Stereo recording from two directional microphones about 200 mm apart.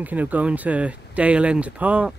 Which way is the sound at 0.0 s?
10° right (ahead or behind).